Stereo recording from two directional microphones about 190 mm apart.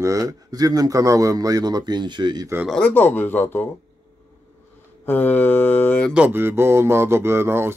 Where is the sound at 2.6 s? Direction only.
5° left (ahead or behind).